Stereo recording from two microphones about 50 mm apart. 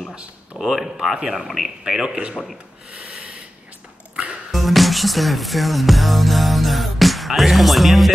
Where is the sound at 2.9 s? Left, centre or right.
Right.